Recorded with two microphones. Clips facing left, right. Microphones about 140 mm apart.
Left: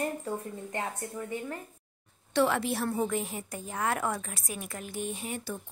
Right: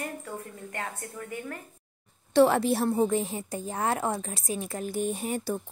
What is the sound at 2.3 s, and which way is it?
A woman's voice, 35° right (ahead or behind).